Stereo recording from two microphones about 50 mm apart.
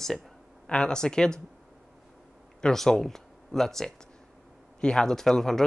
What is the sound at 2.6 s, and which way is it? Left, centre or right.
Speech, centre.